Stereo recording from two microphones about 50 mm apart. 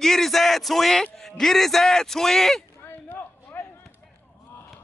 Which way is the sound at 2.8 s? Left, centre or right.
Left.